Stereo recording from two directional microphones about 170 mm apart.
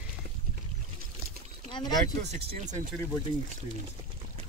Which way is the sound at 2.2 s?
40° right (ahead or behind).